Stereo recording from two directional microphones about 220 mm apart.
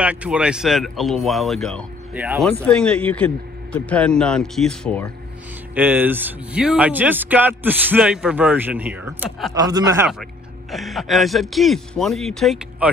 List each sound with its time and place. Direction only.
0.0 s speech: 5° right (ahead or behind)
5.8 s speech: 10° right (ahead or behind)
9.6 s speech: 15° right (ahead or behind)
10.7 s speech: centre (ahead or behind)